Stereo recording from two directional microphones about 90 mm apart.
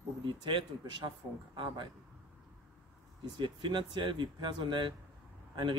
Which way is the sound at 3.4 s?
60° right (ahead or behind).